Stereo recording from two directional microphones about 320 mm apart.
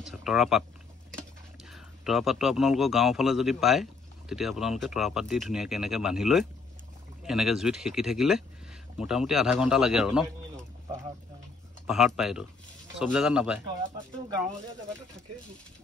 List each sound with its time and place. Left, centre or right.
0.0 s a man's voice: centre
11.8 s a man's voice: centre